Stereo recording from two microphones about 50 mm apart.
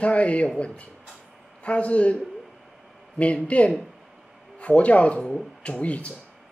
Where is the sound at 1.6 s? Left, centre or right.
Left.